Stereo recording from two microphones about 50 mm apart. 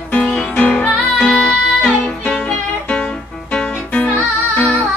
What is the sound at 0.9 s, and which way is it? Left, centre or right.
Music, centre.